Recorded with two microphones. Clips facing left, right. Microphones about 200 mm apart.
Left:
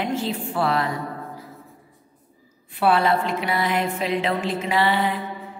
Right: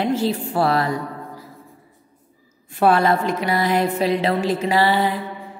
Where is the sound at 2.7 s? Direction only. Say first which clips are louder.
Right 3 dB; 45° right (ahead or behind).